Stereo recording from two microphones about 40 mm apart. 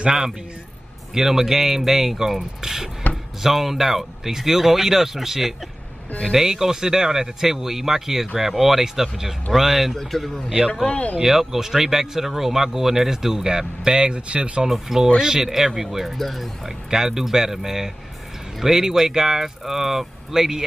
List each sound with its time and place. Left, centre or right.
1.1 s speech: centre
9.9 s speech: centre
10.9 s speech: left
11.1 s speech: centre; by 14.7 s right
14.7 s speech: centre
16.6 s speech: centre